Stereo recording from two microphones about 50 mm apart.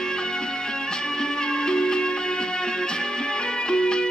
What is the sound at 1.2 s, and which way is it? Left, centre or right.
Music, centre.